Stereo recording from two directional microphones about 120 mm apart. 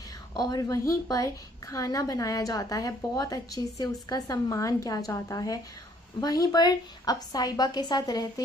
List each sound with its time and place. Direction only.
0.4 s a woman's voice: 30° left (ahead or behind)